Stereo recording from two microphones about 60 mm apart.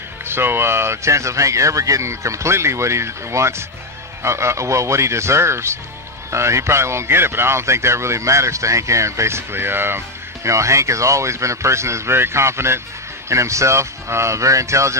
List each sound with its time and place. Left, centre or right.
0.2 s speech: right